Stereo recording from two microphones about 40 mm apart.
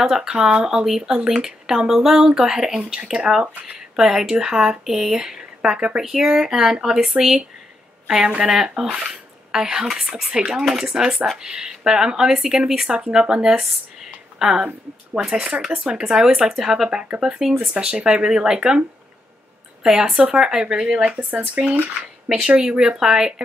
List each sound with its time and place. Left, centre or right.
0.0 s speech: centre
5.9 s speech: centre
6.2 s speech: centre
15.6 s speech: centre
17.7 s speech: right
19.8 s speech: centre
21.0 s speech: right
21.6 s speech: centre